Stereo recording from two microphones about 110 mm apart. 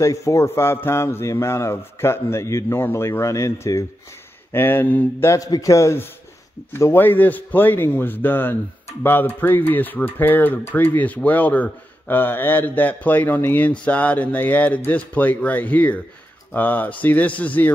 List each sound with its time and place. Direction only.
0.0 s speech: 30° left (ahead or behind)
5.3 s speech: 30° left (ahead or behind); by 17.7 s 15° left (ahead or behind)